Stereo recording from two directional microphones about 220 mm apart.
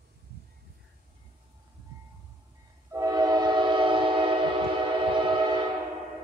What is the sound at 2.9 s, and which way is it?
Train, 15° right (ahead or behind).